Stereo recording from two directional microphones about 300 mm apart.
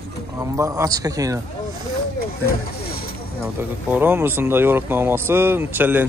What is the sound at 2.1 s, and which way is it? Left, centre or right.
Speech, left.